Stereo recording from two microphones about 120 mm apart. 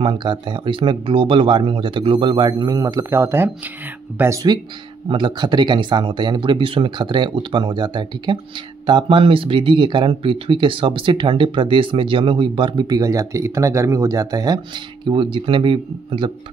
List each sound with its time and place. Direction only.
0.0 s speech: 45° right (ahead or behind); by 4.5 s 25° right (ahead or behind)
5.0 s speech: 40° right (ahead or behind)